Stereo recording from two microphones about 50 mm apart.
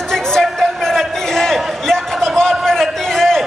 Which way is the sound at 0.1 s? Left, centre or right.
Centre.